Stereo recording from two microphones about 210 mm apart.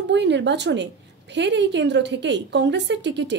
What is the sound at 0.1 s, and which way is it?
A woman's voice, 55° right (ahead or behind).